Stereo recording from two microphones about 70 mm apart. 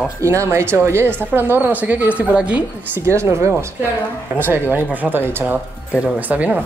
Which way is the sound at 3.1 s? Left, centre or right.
Right.